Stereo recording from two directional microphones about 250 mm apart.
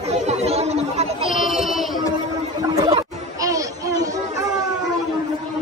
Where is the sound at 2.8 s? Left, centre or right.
Centre.